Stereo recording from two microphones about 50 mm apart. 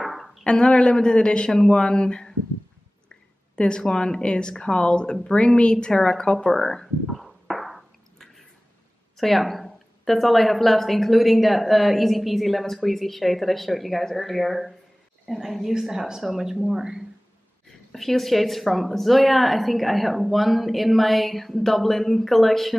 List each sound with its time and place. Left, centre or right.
0.0 s a sound: centre
0.4 s speech: centre
3.5 s speech: centre
7.1 s a sound: centre
9.1 s a woman's voice: centre
17.6 s a woman's voice: centre